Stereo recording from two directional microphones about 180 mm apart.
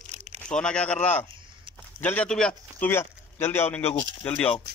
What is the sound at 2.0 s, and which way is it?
Speech, 10° left (ahead or behind).